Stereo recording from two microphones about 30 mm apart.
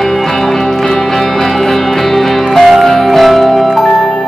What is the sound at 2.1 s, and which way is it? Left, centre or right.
Music, centre.